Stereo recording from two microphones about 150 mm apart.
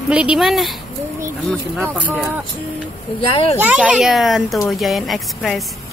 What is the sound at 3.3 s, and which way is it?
Speech, 40° left (ahead or behind).